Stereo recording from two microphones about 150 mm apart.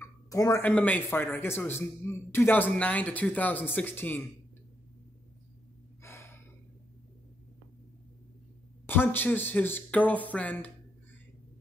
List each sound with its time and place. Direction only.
0.0 s a sound: 20° left (ahead or behind)
0.7 s speech: 10° left (ahead or behind)
6.0 s gasp: 15° left (ahead or behind)
8.8 s speech: 15° left (ahead or behind)